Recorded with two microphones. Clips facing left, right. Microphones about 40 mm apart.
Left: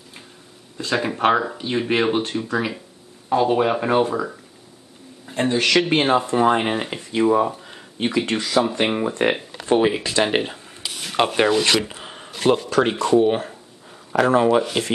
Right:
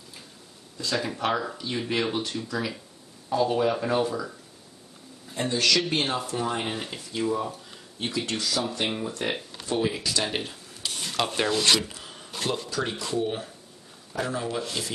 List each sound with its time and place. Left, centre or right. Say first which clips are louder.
0.7 s speech: left 6 dB; left
9.4 s a sound: left 6 dB; left
9.7 s speech: left 9 dB; left
11.0 s speech: left 8 dB; left
12.6 s speech: left 11 dB; left
12.9 s speech: left 13 dB; left
13.2 s speech: left 10 dB; left